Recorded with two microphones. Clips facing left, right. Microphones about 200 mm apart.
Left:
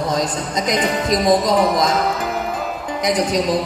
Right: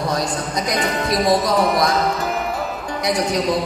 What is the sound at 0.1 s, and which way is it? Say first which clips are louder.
A man's voice: left 1 dB; 20° left (ahead or behind).